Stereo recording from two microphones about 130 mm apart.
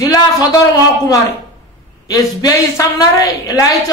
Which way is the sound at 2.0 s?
30° left (ahead or behind).